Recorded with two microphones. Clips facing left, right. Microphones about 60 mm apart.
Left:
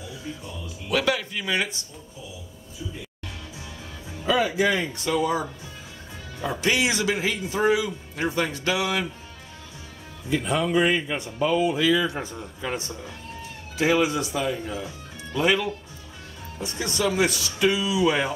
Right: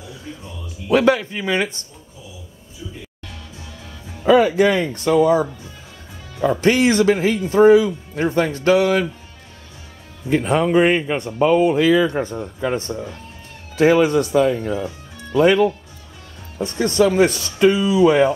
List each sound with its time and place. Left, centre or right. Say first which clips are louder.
0.8 s speech: right 9 dB; right
4.3 s speech: right 8 dB; right
6.6 s speech: right 8 dB; right
10.3 s speech: right 7 dB; right